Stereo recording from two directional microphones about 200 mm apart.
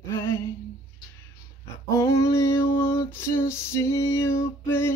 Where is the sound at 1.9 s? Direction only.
15° left (ahead or behind).